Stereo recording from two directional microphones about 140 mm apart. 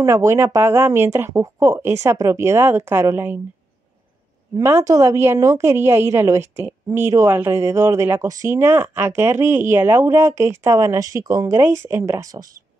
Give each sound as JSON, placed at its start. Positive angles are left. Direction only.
{"t": 0.0, "sound": "a woman's voice", "side_deg": -20}
{"t": 4.6, "sound": "a woman's voice", "side_deg": -20}